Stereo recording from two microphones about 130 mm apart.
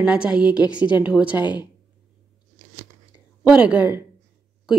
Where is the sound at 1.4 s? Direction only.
35° left (ahead or behind).